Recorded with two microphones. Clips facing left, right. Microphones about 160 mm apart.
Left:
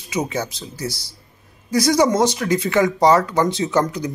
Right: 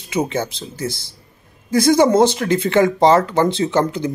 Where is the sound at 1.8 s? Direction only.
25° right (ahead or behind).